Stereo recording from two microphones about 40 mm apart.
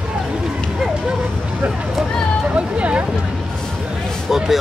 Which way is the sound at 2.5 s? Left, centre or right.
Right.